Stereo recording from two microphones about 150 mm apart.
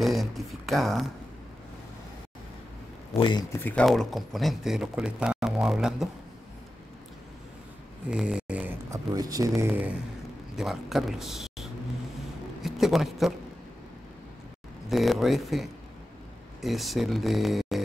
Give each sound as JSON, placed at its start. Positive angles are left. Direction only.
{"t": 0.0, "sound": "speech", "side_deg": 0}
{"t": 3.2, "sound": "speech", "side_deg": 30}
{"t": 3.6, "sound": "speech", "side_deg": 5}
{"t": 8.1, "sound": "a sound", "side_deg": -5}
{"t": 8.9, "sound": "speech", "side_deg": -25}
{"t": 10.5, "sound": "a man's voice", "side_deg": -5}
{"t": 14.9, "sound": "speech", "side_deg": 0}